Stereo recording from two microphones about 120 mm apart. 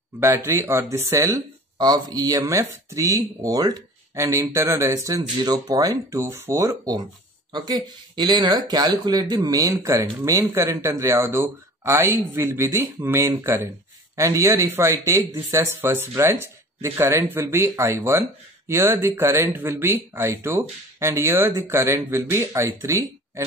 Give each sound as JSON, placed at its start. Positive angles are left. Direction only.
{"t": 0.2, "sound": "speech", "side_deg": -20}
{"t": 1.8, "sound": "speech", "side_deg": -35}